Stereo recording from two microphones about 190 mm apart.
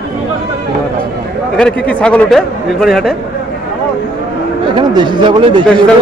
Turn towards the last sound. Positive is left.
turn(degrees=5)  # may be behind; listen again after turning